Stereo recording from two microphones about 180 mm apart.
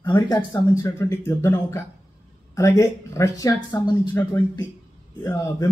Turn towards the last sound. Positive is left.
turn(degrees=15)  # may be behind; listen again after turning